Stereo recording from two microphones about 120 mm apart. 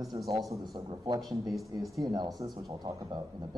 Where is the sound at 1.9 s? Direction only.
30° right (ahead or behind).